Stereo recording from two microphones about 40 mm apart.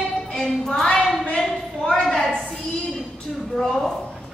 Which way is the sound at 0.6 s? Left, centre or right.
Centre.